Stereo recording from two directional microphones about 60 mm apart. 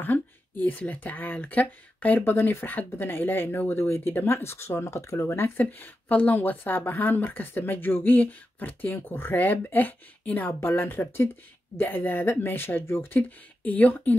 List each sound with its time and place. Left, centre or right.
0.7 s speech: left
5.6 s speech: left